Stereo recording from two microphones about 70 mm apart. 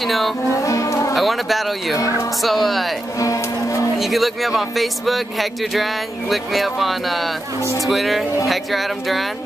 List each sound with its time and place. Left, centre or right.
0.0 s speech: centre
0.6 s music: left
1.1 s speech: centre
2.0 s speech: left
2.4 s speech: centre
3.2 s speech: left
4.0 s speech: centre